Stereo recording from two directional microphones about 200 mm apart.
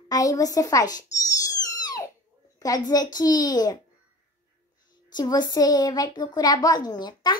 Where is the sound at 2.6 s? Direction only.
20° left (ahead or behind).